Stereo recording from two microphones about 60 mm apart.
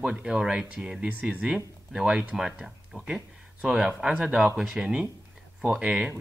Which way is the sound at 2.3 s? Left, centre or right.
Centre.